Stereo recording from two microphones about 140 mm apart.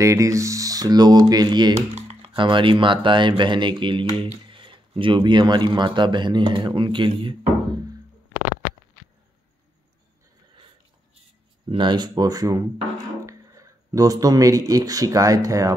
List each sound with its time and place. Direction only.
0.0 s speech: 20° right (ahead or behind)
1.8 s typing: 50° right (ahead or behind)
2.3 s speech: 35° right (ahead or behind)
11.7 s speech: 35° right (ahead or behind)